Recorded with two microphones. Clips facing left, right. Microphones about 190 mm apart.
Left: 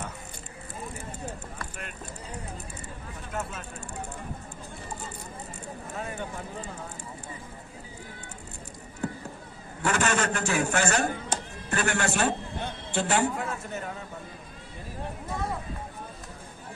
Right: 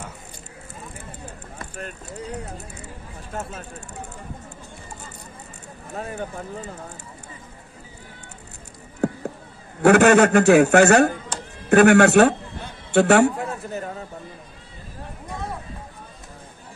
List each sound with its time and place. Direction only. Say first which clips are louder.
3.3 s speech: right 2 dB; 30° right (ahead or behind)
5.9 s speech: right 6 dB; 40° right (ahead or behind)
9.8 s a man's voice: right 13 dB; 60° right (ahead or behind)
13.7 s a sound: right 5 dB; 35° right (ahead or behind)